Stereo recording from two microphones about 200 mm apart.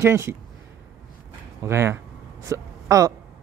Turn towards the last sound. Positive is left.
turn(degrees=-15)  # may be behind; listen again after turning